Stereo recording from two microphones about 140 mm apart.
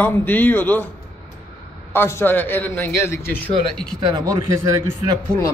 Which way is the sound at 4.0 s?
30° right (ahead or behind).